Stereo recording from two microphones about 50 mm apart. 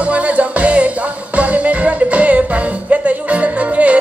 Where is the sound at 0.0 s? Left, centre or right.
Right.